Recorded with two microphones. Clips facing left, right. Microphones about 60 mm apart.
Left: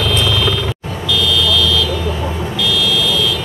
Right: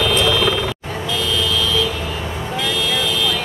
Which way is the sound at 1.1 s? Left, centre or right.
Right.